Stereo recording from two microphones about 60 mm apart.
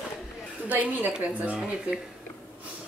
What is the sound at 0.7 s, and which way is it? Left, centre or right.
Speech, right.